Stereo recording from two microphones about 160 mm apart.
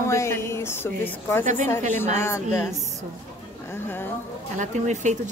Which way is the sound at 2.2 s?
15° left (ahead or behind).